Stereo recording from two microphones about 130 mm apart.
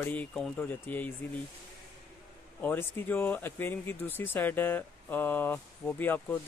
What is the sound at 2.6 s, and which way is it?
Speech, 15° left (ahead or behind).